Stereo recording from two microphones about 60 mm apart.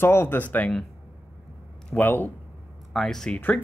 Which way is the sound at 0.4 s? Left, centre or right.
Left.